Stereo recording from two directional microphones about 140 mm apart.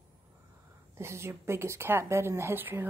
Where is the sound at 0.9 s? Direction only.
20° right (ahead or behind).